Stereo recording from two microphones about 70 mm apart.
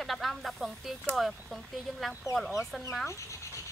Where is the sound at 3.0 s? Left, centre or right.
Left.